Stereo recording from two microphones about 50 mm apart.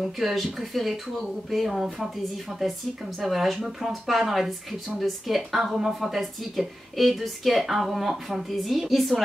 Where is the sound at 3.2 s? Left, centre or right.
Centre.